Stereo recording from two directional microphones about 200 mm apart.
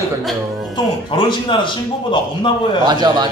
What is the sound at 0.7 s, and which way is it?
A man's voice, 25° left (ahead or behind).